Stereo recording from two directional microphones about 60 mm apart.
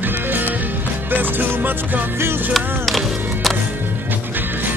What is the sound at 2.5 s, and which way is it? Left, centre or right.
Speech, centre.